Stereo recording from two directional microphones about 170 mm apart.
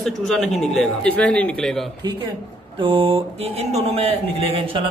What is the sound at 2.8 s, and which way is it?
A man's voice, 30° right (ahead or behind).